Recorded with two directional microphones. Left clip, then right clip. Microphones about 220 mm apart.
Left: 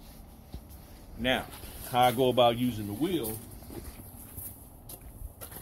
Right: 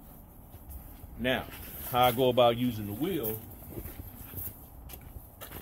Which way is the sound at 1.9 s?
15° right (ahead or behind).